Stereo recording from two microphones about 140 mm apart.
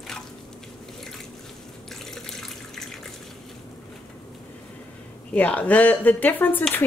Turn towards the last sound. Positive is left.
turn(degrees=15)  # may be behind; listen again after turning